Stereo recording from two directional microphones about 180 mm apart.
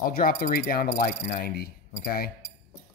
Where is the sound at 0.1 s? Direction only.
55° left (ahead or behind).